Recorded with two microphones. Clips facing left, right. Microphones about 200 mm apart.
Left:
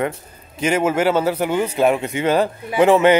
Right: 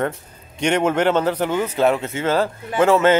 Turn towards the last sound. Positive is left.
turn(degrees=15)  # may be behind; listen again after turning